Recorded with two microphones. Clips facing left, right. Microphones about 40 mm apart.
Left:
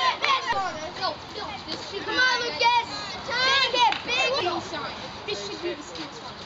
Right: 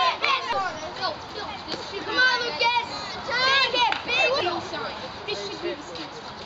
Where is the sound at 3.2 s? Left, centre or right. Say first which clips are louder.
Right 1 dB; centre.